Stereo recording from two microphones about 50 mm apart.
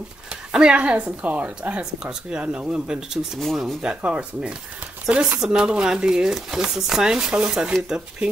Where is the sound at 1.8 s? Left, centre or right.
Centre.